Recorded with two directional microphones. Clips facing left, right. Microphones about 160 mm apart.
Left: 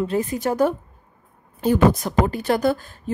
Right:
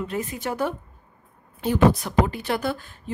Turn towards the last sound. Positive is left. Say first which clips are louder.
# left 7 dB
turn(degrees=40)  # may be behind; listen again after turning